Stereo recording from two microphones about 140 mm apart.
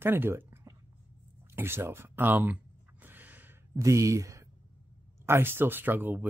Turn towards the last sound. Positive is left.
turn(degrees=-15)  # may be behind; listen again after turning